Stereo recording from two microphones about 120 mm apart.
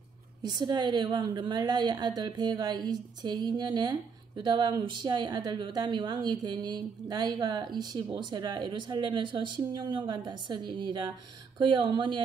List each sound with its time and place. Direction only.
0.4 s a woman's voice: 35° right (ahead or behind)